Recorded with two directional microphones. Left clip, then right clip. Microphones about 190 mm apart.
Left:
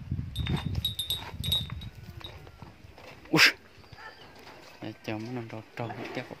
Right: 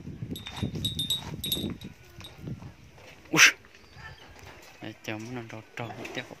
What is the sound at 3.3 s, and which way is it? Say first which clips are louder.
Dog: right 2 dB; 10° left (ahead or behind).